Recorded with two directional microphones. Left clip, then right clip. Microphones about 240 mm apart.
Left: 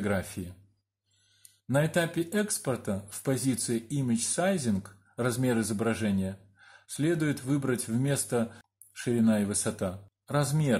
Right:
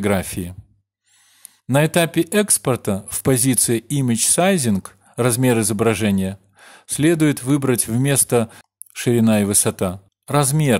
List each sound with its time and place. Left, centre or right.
0.0 s speech: right
1.7 s speech: right